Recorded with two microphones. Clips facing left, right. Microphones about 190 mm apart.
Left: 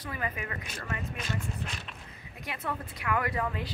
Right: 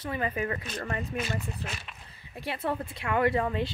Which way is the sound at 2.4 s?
30° right (ahead or behind).